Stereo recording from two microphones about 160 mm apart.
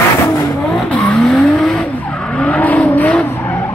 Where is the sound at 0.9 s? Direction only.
5° left (ahead or behind).